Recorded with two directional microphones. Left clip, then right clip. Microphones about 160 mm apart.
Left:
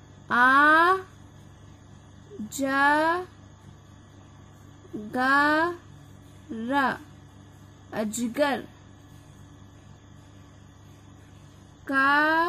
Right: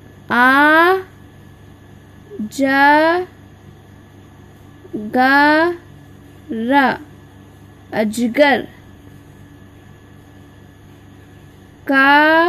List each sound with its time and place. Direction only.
0.3 s a sound: 15° right (ahead or behind)
2.5 s speech: 10° right (ahead or behind)
4.9 s speech: 15° right (ahead or behind)
11.8 s speech: 20° right (ahead or behind)